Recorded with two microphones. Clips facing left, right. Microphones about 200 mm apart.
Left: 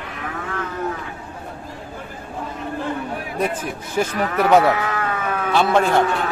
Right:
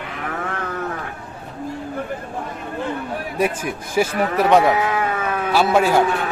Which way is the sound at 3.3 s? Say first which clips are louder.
Right 2 dB; 10° right (ahead or behind).